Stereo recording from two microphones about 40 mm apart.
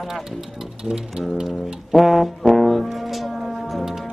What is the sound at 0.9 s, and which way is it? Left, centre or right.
Sewing machine, centre.